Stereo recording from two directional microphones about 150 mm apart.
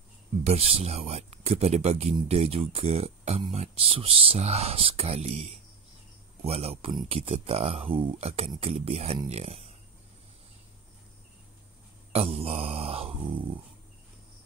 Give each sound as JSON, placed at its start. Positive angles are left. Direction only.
{"t": 0.4, "sound": "speech", "side_deg": -45}
{"t": 12.1, "sound": "speech", "side_deg": -40}